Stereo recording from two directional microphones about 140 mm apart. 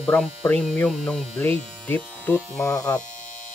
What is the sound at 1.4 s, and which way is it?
Speech, 15° left (ahead or behind).